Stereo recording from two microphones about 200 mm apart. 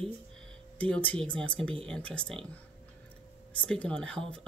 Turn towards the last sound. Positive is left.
turn(degrees=5)  # may be behind; listen again after turning